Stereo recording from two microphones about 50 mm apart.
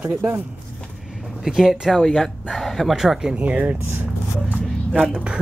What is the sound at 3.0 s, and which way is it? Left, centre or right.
Speech, centre.